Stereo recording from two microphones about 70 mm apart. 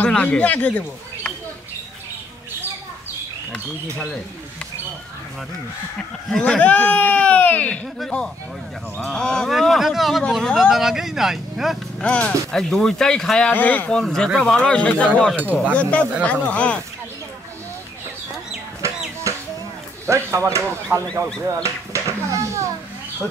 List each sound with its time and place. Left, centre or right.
0.1 s speech: centre
6.3 s speech: centre
8.0 s speech: centre
9.5 s speech: centre
12.0 s speech: centre
12.5 s speech: centre
13.5 s speech: left
13.9 s speech: centre
15.3 s speech: right
15.7 s speech: centre
20.1 s speech: right
21.6 s children playing: right